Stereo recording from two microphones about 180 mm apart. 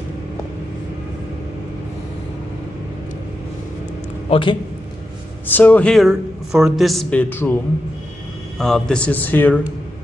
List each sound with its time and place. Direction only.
4.3 s a man's voice: 25° left (ahead or behind)
5.5 s a man's voice: 10° left (ahead or behind)
8.5 s a man's voice: 5° left (ahead or behind)